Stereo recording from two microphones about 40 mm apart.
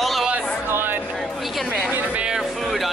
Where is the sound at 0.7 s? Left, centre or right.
Right.